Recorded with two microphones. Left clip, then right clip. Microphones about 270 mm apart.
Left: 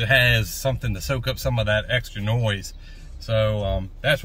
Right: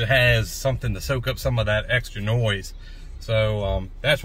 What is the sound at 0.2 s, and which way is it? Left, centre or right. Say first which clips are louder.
Speech: even; centre.